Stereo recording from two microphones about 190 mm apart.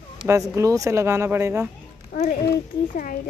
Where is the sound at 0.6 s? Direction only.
15° right (ahead or behind).